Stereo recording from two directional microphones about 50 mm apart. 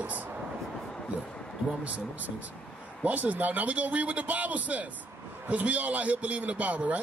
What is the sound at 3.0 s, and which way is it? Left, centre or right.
A man's voice, right.